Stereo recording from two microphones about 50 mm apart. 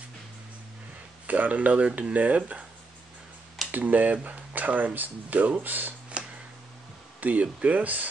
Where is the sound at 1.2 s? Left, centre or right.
Right.